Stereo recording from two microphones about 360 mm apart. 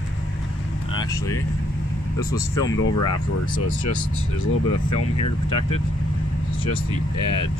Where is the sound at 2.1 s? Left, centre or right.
Left.